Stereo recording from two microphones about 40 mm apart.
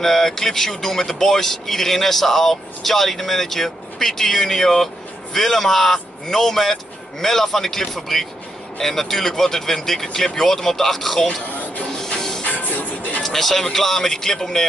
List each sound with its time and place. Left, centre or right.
0.0 s speech: centre
12.2 s music: centre
12.4 s music: left
13.2 s speech: centre